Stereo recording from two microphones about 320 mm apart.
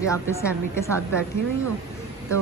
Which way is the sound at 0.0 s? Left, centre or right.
Centre.